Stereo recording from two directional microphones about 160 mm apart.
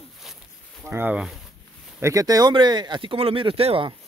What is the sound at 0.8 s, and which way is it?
Speech, 10° right (ahead or behind).